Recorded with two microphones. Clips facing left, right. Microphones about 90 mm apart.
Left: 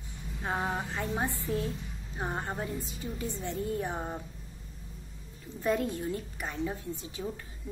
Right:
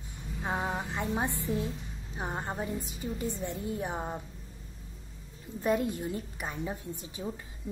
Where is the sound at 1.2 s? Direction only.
20° right (ahead or behind).